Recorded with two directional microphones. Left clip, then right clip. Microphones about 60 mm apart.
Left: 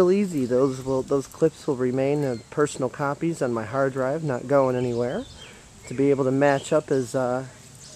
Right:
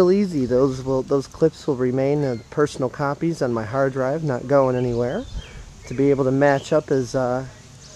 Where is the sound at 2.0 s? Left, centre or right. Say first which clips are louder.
Right 3 dB; right.